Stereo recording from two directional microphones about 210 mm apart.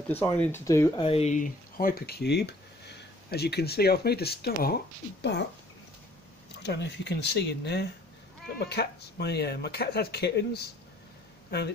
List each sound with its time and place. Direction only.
0.1 s speech: 10° left (ahead or behind)
1.0 s speech: 30° left (ahead or behind); by 5.4 s 50° left (ahead or behind)
6.6 s speech: 55° left (ahead or behind)